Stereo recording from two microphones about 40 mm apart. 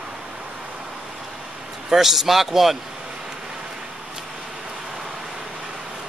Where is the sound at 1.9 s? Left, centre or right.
Centre.